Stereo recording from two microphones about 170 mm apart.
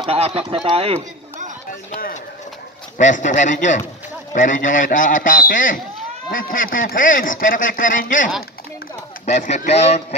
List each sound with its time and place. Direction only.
0.0 s speech: 35° right (ahead or behind)
3.0 s speech: 45° left (ahead or behind)